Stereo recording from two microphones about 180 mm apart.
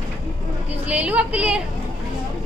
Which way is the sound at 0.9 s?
5° right (ahead or behind).